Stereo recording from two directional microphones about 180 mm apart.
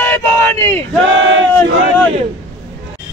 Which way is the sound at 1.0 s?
90° right.